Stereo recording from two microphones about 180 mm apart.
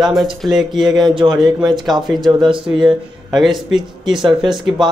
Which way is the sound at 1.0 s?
25° right (ahead or behind).